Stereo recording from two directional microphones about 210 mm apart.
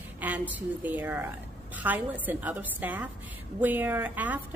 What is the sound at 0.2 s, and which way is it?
A woman's voice, 5° right (ahead or behind).